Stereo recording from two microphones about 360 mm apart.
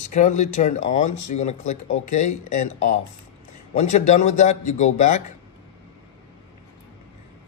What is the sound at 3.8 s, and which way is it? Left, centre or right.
Speech, centre.